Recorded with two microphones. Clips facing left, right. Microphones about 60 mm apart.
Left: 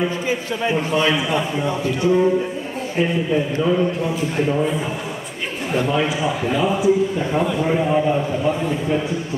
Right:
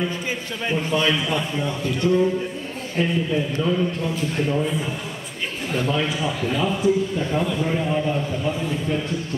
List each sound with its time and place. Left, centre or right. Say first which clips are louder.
0.0 s a man's voice: left 5 dB; centre